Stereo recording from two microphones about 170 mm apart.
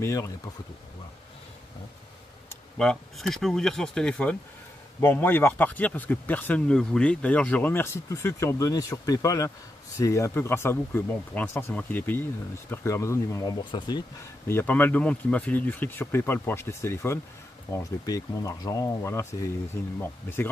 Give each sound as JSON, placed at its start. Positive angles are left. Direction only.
{"t": 0.0, "sound": "speech", "side_deg": 15}
{"t": 2.8, "sound": "speech", "side_deg": 5}
{"t": 14.5, "sound": "speech", "side_deg": 10}